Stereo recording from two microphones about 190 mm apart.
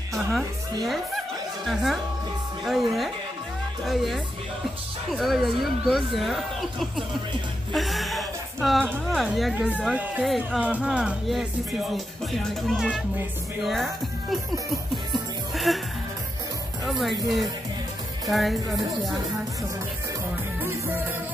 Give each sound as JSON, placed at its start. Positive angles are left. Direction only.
{"t": 0.8, "sound": "speech", "side_deg": 0}
{"t": 15.5, "sound": "music", "side_deg": 0}
{"t": 16.8, "sound": "speech", "side_deg": 0}
{"t": 18.3, "sound": "speech", "side_deg": 0}
{"t": 20.6, "sound": "music", "side_deg": -10}